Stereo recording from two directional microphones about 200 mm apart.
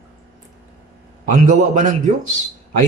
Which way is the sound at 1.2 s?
40° right (ahead or behind).